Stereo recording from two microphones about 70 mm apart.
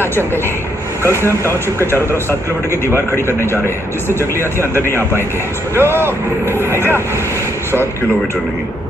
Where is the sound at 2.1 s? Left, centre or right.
Left.